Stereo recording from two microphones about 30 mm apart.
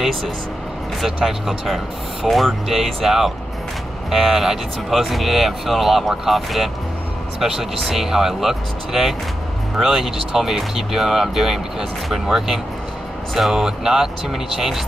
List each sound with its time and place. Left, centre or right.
1.0 s speech: centre
2.2 s speech: centre